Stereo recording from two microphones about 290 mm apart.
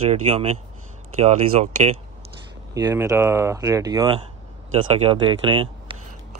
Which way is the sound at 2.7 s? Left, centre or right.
Centre.